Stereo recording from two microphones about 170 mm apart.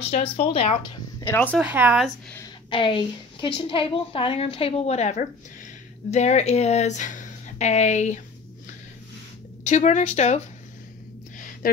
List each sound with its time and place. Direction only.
0.0 s a woman's voice: 35° left (ahead or behind)
1.2 s speech: 10° left (ahead or behind)
1.6 s speech: 10° right (ahead or behind)
2.7 s a woman's voice: 30° left (ahead or behind)
9.7 s speech: 45° left (ahead or behind)
11.6 s speech: 55° left (ahead or behind)